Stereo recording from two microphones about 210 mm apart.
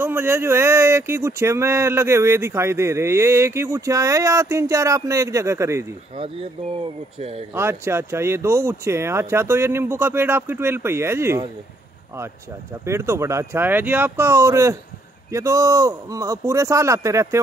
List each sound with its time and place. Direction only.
0.0 s speech: 10° right (ahead or behind)
6.8 s speech: 30° right (ahead or behind)
7.5 s speech: 10° right (ahead or behind)
12.8 s speech: 15° right (ahead or behind)